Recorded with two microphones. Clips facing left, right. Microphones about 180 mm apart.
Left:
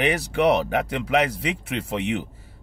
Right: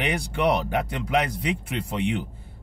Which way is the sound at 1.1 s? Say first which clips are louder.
Left 2 dB; 70° left (ahead or behind).